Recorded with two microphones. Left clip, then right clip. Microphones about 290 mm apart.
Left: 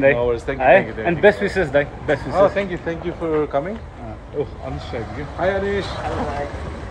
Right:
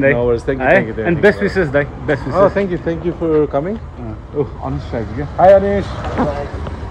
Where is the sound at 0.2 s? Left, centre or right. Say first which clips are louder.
Right 5 dB; centre.